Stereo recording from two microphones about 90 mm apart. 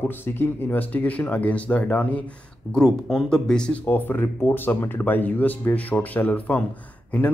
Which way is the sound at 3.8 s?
20° left (ahead or behind).